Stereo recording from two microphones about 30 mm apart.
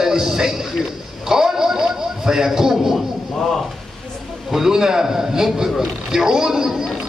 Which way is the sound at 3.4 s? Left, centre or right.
Centre.